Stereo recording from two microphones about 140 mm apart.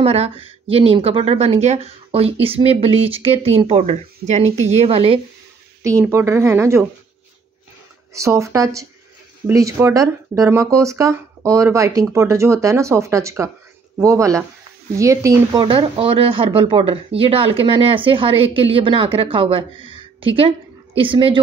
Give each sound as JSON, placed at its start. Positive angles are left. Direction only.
{"t": 0.0, "sound": "speech", "side_deg": -45}
{"t": 5.8, "sound": "speech", "side_deg": -20}
{"t": 8.1, "sound": "speech", "side_deg": -20}
{"t": 15.5, "sound": "speech", "side_deg": -35}